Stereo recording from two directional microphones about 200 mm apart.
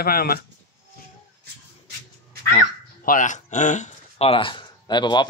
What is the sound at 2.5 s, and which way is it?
Crow, 40° left (ahead or behind).